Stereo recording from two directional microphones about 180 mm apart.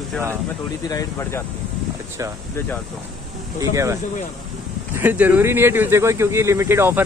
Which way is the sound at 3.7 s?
15° right (ahead or behind).